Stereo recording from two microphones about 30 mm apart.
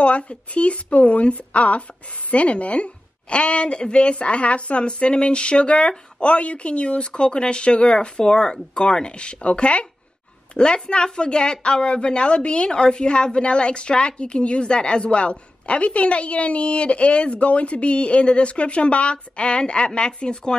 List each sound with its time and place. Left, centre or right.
0.0 s a woman's voice: left
7.9 s a woman's voice: left